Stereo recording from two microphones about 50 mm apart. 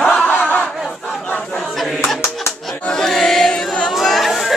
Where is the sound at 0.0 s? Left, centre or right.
Centre.